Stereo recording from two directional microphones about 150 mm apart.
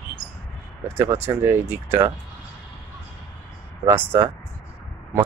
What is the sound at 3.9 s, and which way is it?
Speech, 15° right (ahead or behind).